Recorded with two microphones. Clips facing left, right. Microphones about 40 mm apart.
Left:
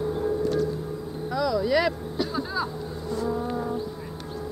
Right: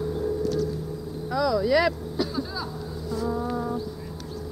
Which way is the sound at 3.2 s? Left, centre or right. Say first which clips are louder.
Even; centre.